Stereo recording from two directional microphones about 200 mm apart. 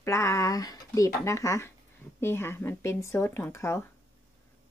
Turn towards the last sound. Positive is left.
turn(degrees=15)  # may be behind; listen again after turning